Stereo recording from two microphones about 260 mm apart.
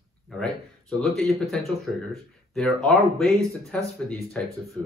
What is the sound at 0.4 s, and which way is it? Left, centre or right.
Speech, centre.